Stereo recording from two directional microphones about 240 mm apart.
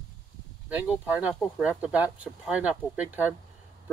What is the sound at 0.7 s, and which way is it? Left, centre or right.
Speech, centre.